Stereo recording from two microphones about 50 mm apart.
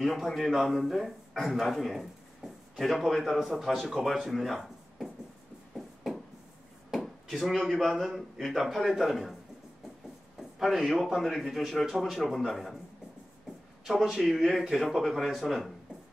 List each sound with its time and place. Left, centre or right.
0.0 s a man's voice: centre
5.8 s a sound: centre
6.9 s speech: centre
10.6 s a man's voice: centre
13.8 s a man's voice: centre